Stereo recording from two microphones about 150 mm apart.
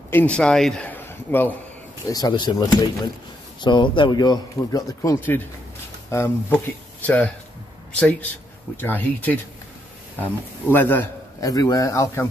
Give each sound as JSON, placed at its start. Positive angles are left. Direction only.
{"t": 0.1, "sound": "a man's voice", "side_deg": 10}
{"t": 2.0, "sound": "speech", "side_deg": 25}
{"t": 11.4, "sound": "speech", "side_deg": 25}